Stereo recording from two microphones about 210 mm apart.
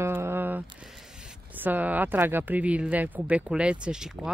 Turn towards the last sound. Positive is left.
turn(degrees=-5)  # may be behind; listen again after turning